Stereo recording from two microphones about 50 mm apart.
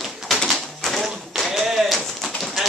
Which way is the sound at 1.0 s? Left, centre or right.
Centre.